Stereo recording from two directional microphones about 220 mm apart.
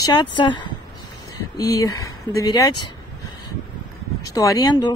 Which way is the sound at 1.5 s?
15° left (ahead or behind).